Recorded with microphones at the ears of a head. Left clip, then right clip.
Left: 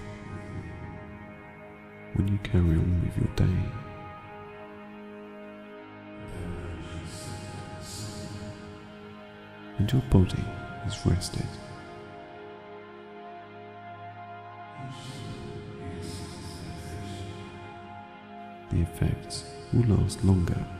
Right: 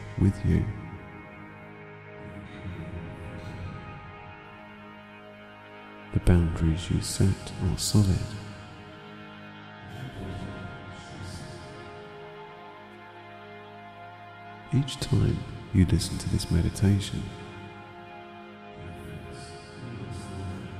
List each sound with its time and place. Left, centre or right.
0.2 s speech: right
2.1 s speech: left
6.1 s speech: right
9.8 s speech: left
14.7 s speech: right
18.7 s speech: left